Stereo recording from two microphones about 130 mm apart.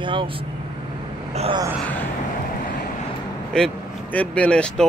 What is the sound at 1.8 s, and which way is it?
Speech, 15° left (ahead or behind).